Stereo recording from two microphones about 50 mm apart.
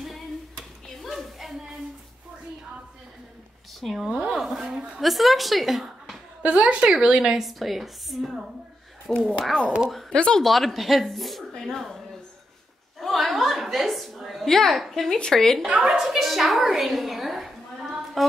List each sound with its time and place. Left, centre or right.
1.0 s a sound: centre
3.8 s speech: centre
5.0 s a woman's voice: centre
6.4 s a woman's voice: right; by 10.4 s centre
10.4 s a woman's voice: centre
13.0 s a sound: centre
15.1 s a woman's voice: centre
15.6 s a woman's voice: centre